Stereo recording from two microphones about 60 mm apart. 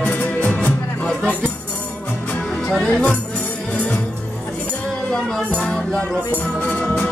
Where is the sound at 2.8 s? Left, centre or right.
Left.